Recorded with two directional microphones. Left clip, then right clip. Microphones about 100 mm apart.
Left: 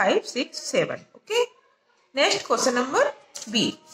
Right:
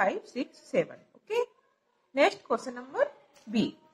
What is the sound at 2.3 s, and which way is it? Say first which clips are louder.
Speech: left 9 dB; 35° left (ahead or behind).